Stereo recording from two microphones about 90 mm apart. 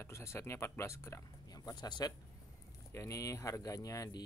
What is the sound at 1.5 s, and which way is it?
Speech, 45° left (ahead or behind).